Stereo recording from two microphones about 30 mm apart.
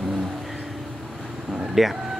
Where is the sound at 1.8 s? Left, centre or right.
Centre.